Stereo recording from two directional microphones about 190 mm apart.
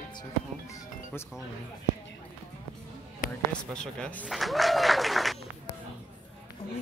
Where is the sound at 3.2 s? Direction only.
45° left (ahead or behind).